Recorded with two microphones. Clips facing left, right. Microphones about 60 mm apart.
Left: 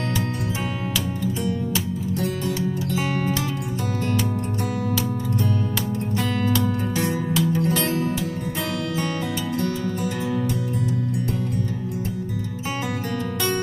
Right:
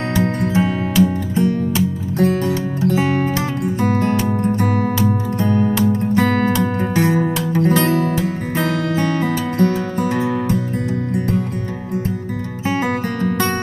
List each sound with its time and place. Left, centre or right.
0.1 s music: right
12.6 s guitar: right